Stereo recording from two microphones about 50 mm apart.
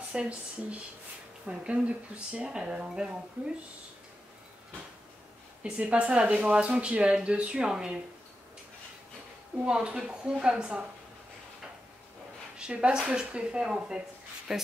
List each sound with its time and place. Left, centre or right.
0.1 s speech: right
5.6 s speech: right
9.7 s speech: centre
12.5 s a woman's voice: right